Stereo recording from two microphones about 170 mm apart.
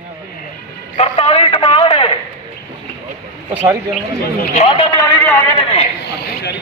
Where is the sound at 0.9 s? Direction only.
35° left (ahead or behind).